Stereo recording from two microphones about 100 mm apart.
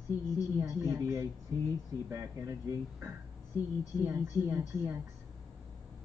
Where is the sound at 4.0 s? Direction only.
25° right (ahead or behind).